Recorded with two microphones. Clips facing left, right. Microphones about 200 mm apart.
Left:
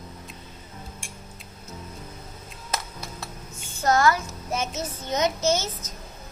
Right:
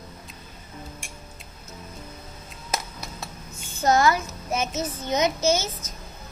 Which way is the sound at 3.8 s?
20° right (ahead or behind).